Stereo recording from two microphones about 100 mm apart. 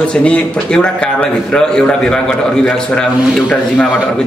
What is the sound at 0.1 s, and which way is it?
A man's voice, 10° left (ahead or behind).